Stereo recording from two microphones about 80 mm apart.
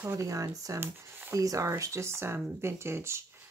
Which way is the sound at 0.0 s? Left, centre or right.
Right.